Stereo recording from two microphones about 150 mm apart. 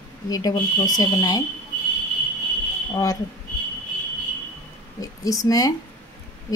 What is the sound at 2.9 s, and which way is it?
Speech, 25° left (ahead or behind).